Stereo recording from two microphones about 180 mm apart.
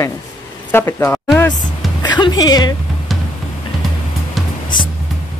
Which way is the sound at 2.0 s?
25° left (ahead or behind).